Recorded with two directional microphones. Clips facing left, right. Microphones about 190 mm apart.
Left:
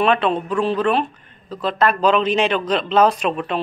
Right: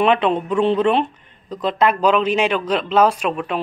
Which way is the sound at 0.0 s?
20° right (ahead or behind).